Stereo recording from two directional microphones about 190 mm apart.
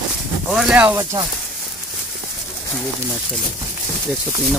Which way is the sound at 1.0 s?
20° right (ahead or behind).